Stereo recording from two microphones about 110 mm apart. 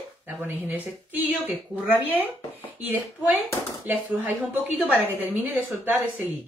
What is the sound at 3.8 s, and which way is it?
Speech, 15° right (ahead or behind).